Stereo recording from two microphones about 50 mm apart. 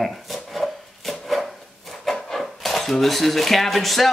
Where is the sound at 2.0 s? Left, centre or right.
Centre.